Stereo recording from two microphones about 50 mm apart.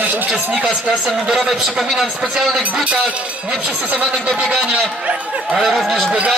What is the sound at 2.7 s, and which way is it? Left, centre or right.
Speech, right.